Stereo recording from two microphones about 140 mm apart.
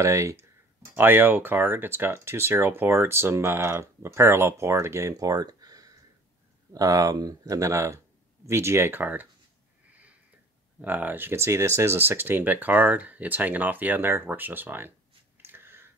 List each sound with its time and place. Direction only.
0.0 s speech: 20° right (ahead or behind)
10.8 s speech: 10° right (ahead or behind)
15.4 s a sound: 15° right (ahead or behind)